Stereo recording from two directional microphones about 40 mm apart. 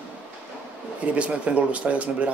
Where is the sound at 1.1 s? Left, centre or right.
Right.